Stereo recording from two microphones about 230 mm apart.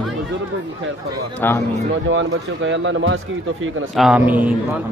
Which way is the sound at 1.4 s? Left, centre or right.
Centre.